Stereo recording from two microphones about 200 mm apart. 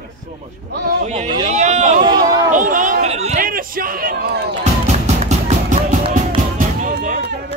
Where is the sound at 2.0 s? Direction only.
20° right (ahead or behind).